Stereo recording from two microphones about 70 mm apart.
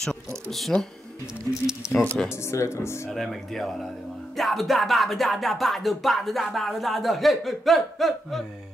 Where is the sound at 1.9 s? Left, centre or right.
Centre.